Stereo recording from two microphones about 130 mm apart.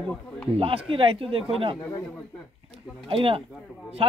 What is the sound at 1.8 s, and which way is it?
Speech, 25° left (ahead or behind).